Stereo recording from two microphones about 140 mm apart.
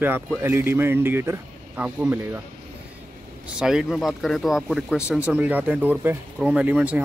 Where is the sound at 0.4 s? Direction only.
20° right (ahead or behind).